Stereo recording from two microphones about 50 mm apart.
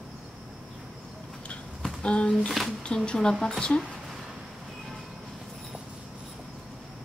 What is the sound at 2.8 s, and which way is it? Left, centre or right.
Speech, centre.